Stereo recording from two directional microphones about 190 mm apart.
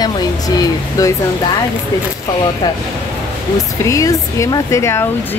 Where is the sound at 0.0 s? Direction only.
20° left (ahead or behind).